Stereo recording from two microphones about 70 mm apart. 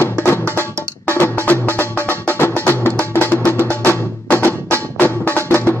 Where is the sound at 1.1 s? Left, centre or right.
Left.